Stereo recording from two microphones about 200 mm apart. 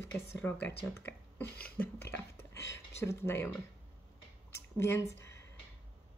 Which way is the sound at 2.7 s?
15° left (ahead or behind).